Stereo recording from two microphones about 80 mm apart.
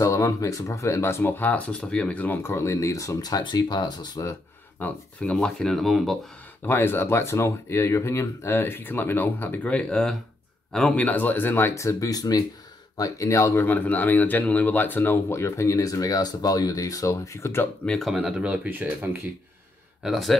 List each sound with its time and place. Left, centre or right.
0.0 s speech: left
4.8 s speech: left
5.2 s speech: centre
6.6 s speech: left
11.7 s speech: left
13.7 s speech: left
17.8 s speech: centre
18.1 s speech: centre
20.0 s speech: centre